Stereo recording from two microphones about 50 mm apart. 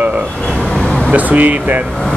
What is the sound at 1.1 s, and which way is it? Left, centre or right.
Speech, right.